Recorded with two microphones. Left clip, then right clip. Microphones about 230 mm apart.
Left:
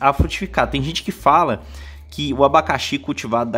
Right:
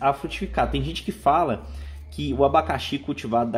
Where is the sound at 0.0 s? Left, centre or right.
Left.